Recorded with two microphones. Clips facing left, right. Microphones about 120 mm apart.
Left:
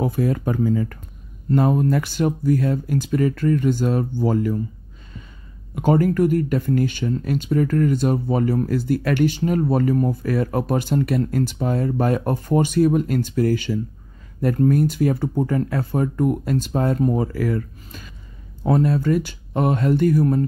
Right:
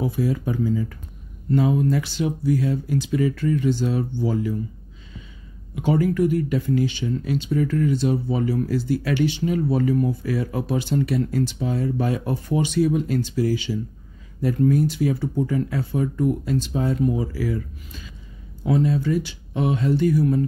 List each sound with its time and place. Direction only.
0.0 s speech: 50° left (ahead or behind)
5.8 s speech: 50° left (ahead or behind)